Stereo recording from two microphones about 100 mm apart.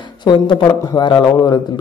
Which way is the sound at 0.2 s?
50° left (ahead or behind).